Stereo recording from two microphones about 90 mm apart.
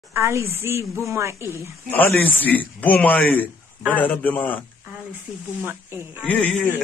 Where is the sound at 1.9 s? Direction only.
20° left (ahead or behind).